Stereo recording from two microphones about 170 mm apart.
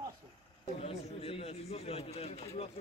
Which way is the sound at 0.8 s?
35° left (ahead or behind).